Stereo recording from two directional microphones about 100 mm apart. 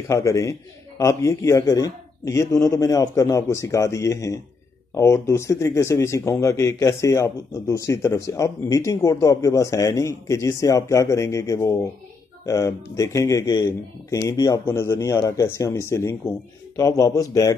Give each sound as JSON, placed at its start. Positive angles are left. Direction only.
{"t": 0.1, "sound": "speech", "side_deg": 30}
{"t": 14.6, "sound": "speech", "side_deg": 25}